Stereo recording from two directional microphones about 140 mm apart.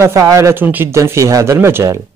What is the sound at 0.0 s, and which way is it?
Speech, 20° right (ahead or behind).